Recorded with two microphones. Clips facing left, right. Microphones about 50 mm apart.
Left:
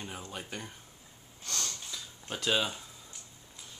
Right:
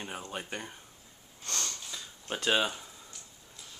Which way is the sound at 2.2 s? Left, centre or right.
Centre.